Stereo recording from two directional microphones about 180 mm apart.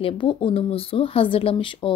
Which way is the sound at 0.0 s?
30° left (ahead or behind).